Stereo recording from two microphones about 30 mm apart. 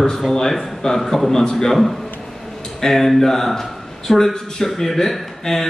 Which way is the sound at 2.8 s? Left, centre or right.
Centre.